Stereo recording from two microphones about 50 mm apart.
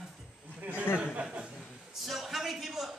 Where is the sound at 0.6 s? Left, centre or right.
Right.